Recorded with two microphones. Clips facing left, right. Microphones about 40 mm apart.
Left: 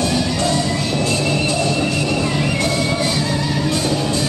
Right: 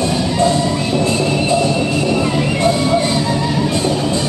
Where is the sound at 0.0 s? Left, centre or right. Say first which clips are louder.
Right 3 dB; right.